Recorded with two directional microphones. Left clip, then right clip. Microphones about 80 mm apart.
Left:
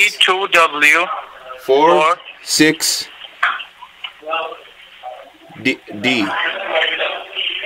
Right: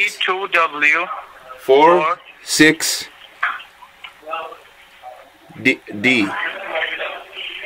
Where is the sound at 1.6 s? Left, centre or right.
Centre.